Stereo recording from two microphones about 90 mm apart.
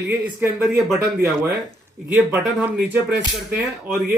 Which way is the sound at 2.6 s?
20° right (ahead or behind).